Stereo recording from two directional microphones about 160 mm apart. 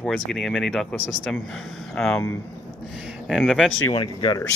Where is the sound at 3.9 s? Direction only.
30° left (ahead or behind).